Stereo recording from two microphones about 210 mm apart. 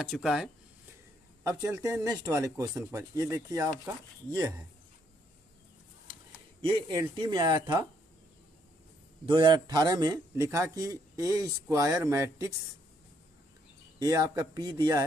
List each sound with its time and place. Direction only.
0.0 s speech: 5° right (ahead or behind)
1.4 s a man's voice: 15° right (ahead or behind)
6.6 s speech: 20° right (ahead or behind)
9.2 s a man's voice: 20° right (ahead or behind)
13.9 s speech: 20° right (ahead or behind)